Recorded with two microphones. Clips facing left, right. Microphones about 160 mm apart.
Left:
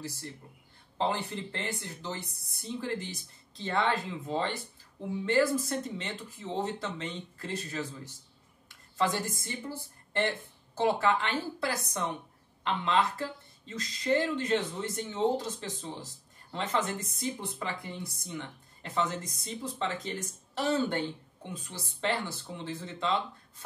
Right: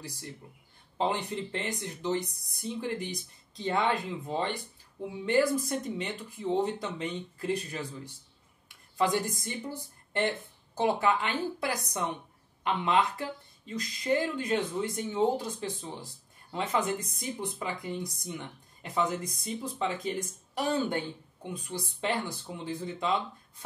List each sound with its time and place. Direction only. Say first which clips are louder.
0.9 s a woman's voice: right 1 dB; 15° right (ahead or behind)